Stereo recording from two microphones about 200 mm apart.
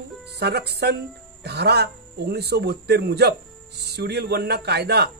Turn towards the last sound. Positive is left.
turn(degrees=-55)  # may be behind; listen again after turning